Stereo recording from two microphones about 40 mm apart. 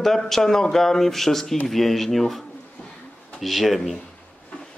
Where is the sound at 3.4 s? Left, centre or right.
Centre.